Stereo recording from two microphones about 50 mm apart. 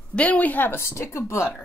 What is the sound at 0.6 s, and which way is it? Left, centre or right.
Speech, left.